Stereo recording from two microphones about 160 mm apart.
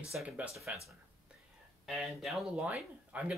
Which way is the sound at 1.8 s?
Centre (ahead or behind).